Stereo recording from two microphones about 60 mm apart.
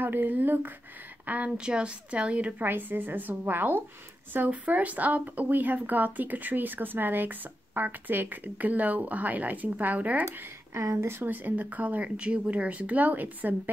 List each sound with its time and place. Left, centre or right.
0.0 s a woman's voice: right
1.6 s speech: centre
2.6 s a woman's voice: right
10.2 s speech: right
11.2 s speech: right